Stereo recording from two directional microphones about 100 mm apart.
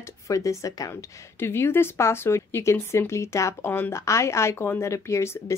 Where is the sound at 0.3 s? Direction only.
35° left (ahead or behind).